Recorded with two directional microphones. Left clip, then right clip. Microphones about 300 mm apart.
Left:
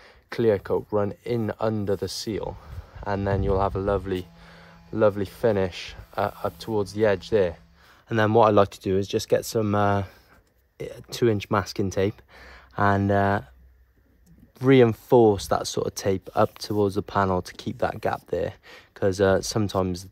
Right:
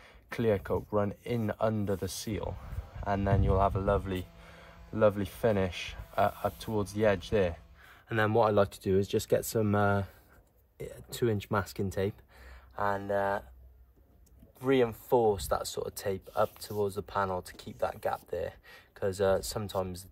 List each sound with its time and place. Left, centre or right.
0.0 s speech: left
8.1 s speech: centre
14.6 s speech: left